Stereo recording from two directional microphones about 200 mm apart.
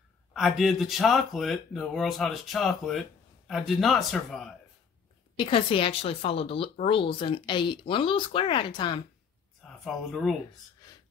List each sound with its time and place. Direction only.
0.3 s speech: centre (ahead or behind)
5.4 s speech: 25° left (ahead or behind)
9.6 s a sound: centre (ahead or behind)